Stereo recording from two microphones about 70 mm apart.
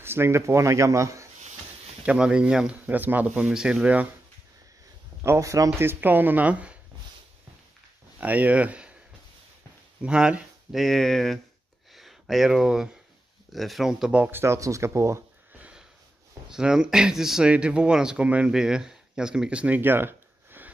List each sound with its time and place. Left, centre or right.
0.0 s speech: right
2.0 s speech: centre
3.0 s speech: right
3.3 s speech: centre
5.2 s speech: right
5.8 s speech: right
8.2 s speech: right
10.0 s speech: centre
10.7 s speech: centre
14.3 s speech: right
16.4 s speech: centre
19.8 s a sound: right